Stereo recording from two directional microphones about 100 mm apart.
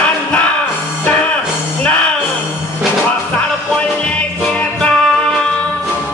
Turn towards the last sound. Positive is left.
turn(degrees=10)  # may be behind; listen again after turning